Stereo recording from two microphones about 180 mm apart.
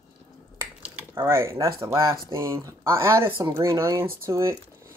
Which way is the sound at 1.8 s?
15° right (ahead or behind).